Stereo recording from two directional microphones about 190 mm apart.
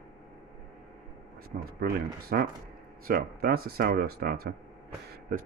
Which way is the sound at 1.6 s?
50° right (ahead or behind).